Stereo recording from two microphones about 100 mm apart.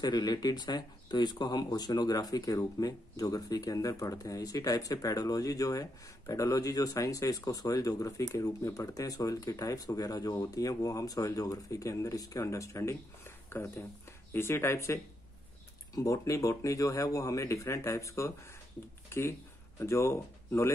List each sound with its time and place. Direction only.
0.0 s speech: 40° left (ahead or behind)